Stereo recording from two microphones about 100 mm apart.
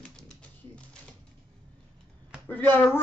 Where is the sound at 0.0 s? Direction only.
10° left (ahead or behind).